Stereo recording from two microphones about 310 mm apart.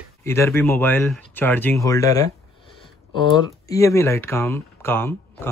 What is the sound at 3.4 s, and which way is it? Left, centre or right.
Speech, centre.